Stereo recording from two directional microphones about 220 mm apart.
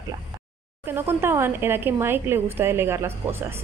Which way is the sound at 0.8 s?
10° right (ahead or behind).